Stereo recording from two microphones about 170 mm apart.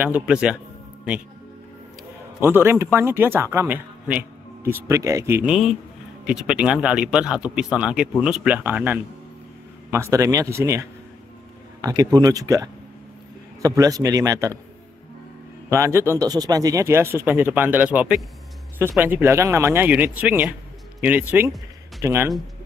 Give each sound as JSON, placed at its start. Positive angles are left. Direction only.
{"t": 0.0, "sound": "speech", "side_deg": -10}
{"t": 2.4, "sound": "a man's voice", "side_deg": -15}
{"t": 15.7, "sound": "speech", "side_deg": -15}